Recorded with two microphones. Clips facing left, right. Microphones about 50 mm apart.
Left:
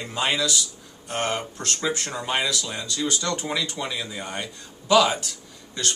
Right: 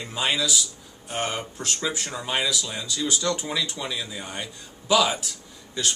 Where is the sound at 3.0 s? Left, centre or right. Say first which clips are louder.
Right 1 dB; centre.